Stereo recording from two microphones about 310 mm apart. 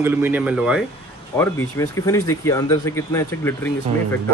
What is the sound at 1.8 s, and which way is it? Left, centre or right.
Speech, centre.